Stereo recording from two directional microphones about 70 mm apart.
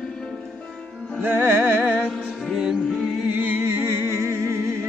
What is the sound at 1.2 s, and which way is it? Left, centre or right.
Music, right.